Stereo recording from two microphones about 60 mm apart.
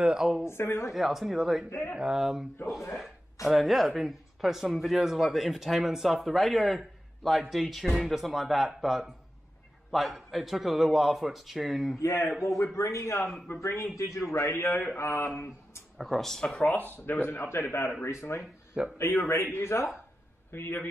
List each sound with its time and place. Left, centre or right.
0.0 s speech: centre
0.5 s a man's voice: left
0.9 s speech: centre
1.7 s a man's voice: left
2.0 s speech: centre
12.0 s a man's voice: left
16.0 s speech: centre
16.6 s a man's voice: left